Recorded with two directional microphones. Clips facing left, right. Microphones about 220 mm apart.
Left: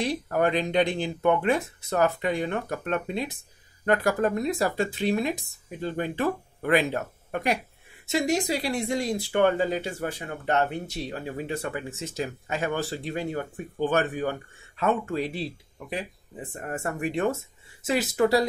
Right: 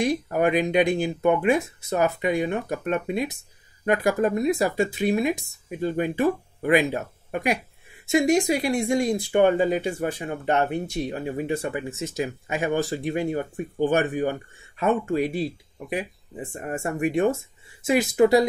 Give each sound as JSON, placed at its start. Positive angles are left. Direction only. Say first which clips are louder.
{"t": 0.0, "sound": "speech", "louder": "right 3 dB", "side_deg": -10}